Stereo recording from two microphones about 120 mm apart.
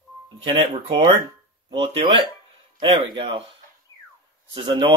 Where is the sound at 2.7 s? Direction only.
40° right (ahead or behind).